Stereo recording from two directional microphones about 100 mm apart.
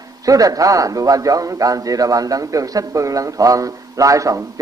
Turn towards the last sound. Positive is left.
turn(degrees=-35)  # may be behind; listen again after turning